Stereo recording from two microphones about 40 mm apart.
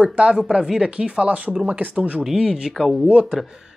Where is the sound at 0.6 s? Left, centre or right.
Centre.